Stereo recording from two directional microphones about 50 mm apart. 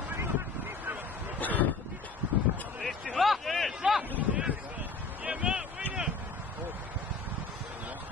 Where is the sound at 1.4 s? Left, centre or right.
Left.